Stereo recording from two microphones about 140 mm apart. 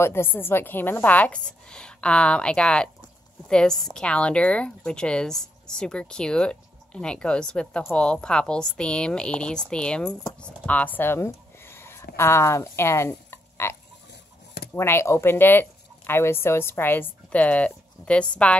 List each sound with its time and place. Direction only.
0.0 s a woman's voice: 15° left (ahead or behind)
14.8 s a woman's voice: 20° left (ahead or behind)